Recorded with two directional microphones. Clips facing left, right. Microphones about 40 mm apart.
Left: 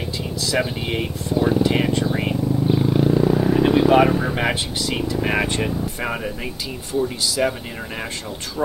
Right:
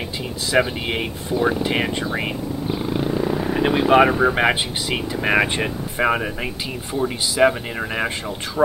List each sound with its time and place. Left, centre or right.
0.5 s speech: centre
2.7 s speech: centre; by 8.1 s right